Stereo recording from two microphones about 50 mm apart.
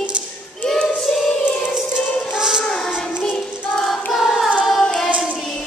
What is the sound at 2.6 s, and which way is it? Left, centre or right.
Child singing, centre.